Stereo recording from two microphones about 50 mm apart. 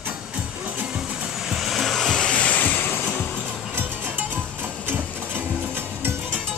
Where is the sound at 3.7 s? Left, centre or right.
Right.